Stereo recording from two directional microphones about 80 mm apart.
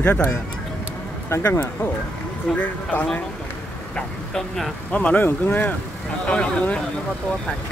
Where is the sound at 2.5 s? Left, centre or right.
Centre.